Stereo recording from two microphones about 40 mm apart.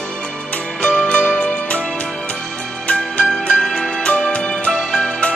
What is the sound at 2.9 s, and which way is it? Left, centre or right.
Music, left.